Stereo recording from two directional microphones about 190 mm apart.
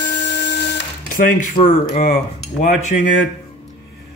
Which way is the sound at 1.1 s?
45° left (ahead or behind).